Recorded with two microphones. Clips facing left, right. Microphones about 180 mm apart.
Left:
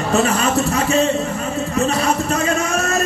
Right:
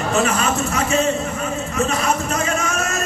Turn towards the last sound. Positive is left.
turn(degrees=35)  # may be behind; listen again after turning